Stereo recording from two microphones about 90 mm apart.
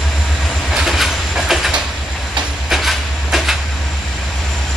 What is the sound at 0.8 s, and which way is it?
Train, centre (ahead or behind).